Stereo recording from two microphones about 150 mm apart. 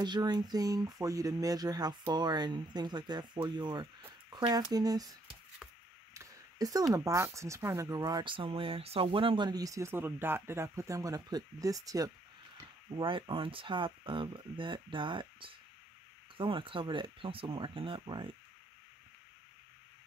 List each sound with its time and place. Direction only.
0.0 s speech: 30° right (ahead or behind)
6.1 s a sound: 25° right (ahead or behind)
6.9 s speech: 20° right (ahead or behind)
12.9 s speech: 35° right (ahead or behind)